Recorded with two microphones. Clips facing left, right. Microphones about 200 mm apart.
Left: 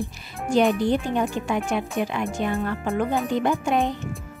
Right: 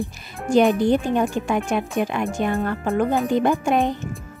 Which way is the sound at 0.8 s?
50° right (ahead or behind).